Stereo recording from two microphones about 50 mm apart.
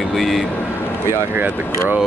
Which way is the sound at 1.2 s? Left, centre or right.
Right.